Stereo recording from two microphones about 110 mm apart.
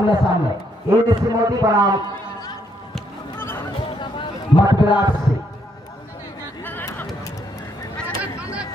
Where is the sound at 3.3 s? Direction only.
20° left (ahead or behind).